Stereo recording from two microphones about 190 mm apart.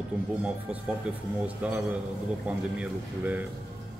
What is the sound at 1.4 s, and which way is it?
A man's voice, 10° right (ahead or behind).